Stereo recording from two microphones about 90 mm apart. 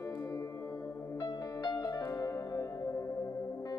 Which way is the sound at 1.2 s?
45° left (ahead or behind).